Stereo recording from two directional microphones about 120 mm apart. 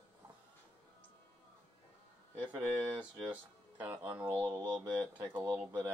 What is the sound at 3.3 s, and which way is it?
Speech, 15° right (ahead or behind).